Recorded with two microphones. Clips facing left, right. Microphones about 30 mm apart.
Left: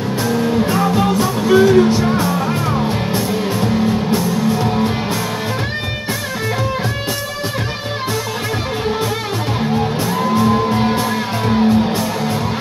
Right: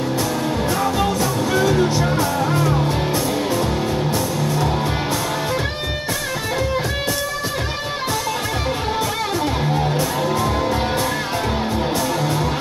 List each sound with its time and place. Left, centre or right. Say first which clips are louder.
0.3 s music: left 5 dB; centre
3.6 s music: left 4 dB; centre
10.3 s music: left 5 dB; left